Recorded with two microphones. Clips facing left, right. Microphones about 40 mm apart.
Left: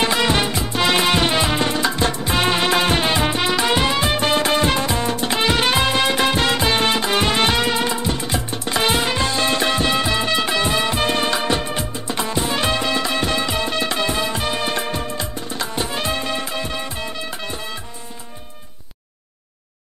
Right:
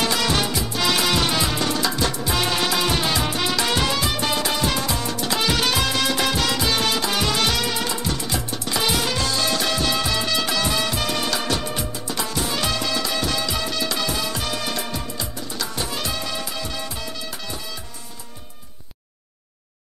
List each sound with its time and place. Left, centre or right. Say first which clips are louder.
0.0 s music: left 3 dB; left